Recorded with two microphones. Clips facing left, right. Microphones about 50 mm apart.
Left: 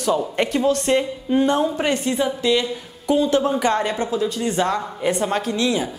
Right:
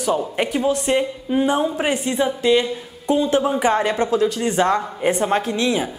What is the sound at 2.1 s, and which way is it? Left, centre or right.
Speech, right.